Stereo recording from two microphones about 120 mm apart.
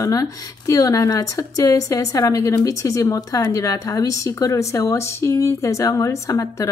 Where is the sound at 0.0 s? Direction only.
30° left (ahead or behind).